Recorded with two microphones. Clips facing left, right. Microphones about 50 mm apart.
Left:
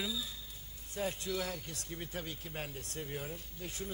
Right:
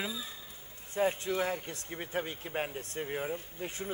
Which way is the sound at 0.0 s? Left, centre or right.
Right.